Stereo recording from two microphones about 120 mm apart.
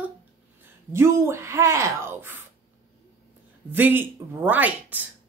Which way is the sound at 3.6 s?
15° right (ahead or behind).